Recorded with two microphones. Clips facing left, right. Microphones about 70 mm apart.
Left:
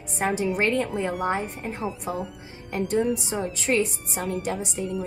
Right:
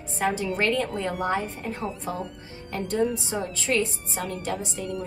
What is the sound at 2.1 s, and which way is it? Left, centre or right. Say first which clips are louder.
A woman's voice: left 2 dB; centre.